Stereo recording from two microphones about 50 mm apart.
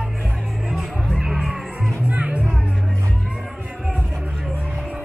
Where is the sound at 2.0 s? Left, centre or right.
Right.